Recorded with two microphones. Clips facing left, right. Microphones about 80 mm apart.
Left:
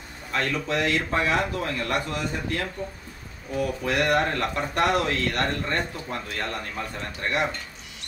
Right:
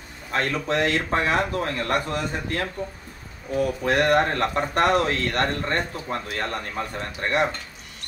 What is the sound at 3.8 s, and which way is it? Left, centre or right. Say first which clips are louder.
Speech: right 3 dB; right.